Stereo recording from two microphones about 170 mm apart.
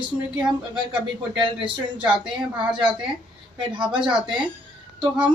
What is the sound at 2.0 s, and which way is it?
Speech, 5° right (ahead or behind).